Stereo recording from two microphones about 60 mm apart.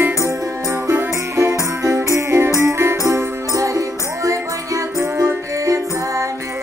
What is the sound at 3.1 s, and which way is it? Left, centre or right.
Music, right.